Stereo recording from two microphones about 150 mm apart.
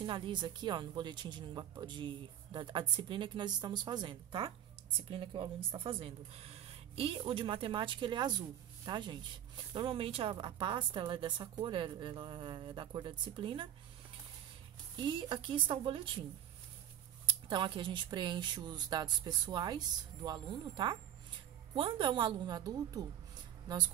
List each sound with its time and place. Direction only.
0.0 s speech: 30° right (ahead or behind)
15.0 s speech: 30° right (ahead or behind)
17.3 s speech: 35° right (ahead or behind)